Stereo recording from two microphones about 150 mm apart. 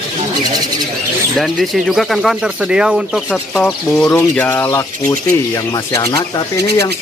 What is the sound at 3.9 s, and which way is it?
Speech, 15° left (ahead or behind).